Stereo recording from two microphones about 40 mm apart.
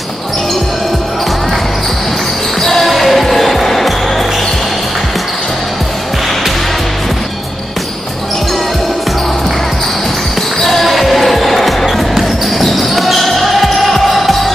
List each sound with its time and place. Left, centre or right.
2.6 s basketball bounce: centre
10.6 s basketball bounce: centre